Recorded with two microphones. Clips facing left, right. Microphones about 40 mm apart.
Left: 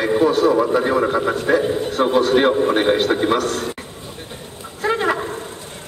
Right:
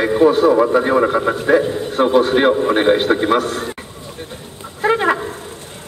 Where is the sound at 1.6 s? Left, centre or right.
Centre.